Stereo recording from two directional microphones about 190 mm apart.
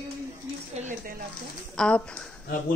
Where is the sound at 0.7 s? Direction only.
40° right (ahead or behind).